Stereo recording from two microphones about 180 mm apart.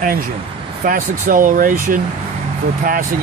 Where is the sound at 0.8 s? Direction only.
50° right (ahead or behind).